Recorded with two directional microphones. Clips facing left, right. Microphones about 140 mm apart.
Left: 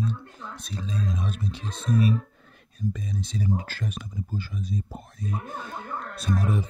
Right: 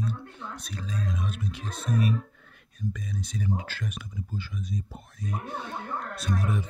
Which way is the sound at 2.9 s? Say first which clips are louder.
Left 3 dB; 30° left (ahead or behind).